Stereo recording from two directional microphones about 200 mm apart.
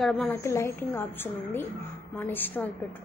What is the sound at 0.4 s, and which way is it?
A woman's voice, 15° left (ahead or behind).